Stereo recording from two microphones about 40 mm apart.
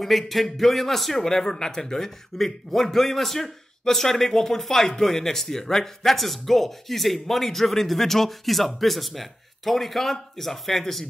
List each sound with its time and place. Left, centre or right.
0.0 s a man's voice: centre